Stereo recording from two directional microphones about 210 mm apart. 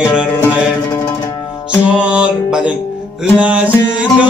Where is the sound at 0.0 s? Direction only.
5° right (ahead or behind).